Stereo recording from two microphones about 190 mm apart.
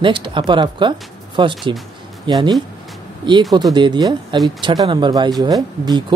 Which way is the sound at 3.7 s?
25° right (ahead or behind).